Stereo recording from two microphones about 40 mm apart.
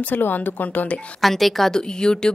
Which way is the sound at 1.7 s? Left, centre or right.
Centre.